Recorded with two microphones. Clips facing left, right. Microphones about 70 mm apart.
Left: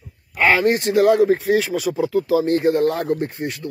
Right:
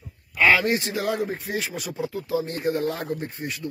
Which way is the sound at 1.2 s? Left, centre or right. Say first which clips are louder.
Left 12 dB; left.